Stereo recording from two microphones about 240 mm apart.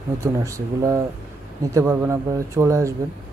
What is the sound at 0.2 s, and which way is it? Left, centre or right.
Speech, centre.